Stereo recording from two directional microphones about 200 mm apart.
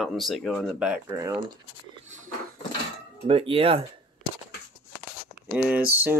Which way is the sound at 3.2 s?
30° right (ahead or behind).